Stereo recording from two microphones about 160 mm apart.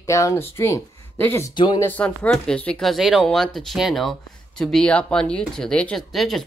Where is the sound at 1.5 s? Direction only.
30° left (ahead or behind).